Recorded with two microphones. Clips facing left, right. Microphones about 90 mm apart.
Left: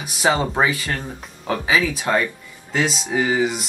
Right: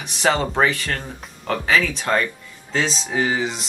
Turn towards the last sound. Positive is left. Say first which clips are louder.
# left 2 dB
turn(degrees=10)  # may be behind; listen again after turning